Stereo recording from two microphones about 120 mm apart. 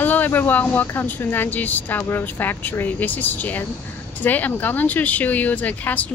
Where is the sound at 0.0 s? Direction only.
15° left (ahead or behind).